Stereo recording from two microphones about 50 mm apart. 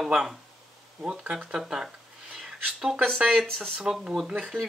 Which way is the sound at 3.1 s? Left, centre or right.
Centre.